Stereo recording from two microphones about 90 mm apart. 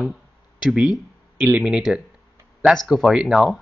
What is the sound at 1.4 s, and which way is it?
Speech, 20° right (ahead or behind).